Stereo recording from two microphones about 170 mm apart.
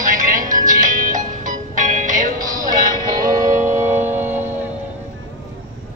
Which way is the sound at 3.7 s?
15° right (ahead or behind).